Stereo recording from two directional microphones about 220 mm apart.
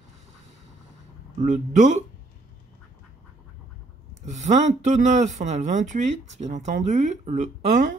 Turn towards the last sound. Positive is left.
turn(degrees=-35)  # may be behind; listen again after turning